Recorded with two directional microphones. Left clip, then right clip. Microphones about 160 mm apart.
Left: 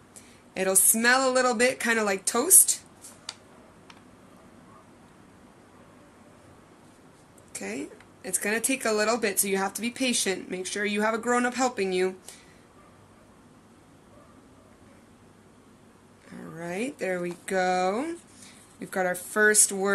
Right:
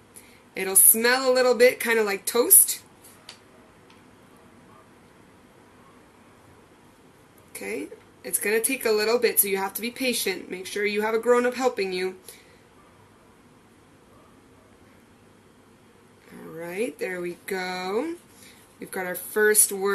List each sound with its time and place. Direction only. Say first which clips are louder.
0.6 s speech: right 1 dB; 90° left
7.5 s speech: right 3 dB; 90° left
16.5 s speech: right 3 dB; 85° left